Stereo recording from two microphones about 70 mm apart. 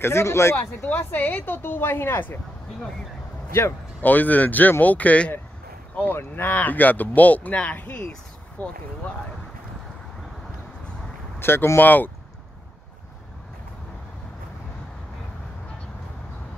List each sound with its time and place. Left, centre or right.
0.0 s speech: left
0.8 s speech: left
4.0 s speech: left
11.3 s speech: left
11.8 s speech: left